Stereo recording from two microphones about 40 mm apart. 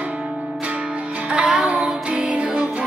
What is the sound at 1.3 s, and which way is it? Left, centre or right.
Music, right.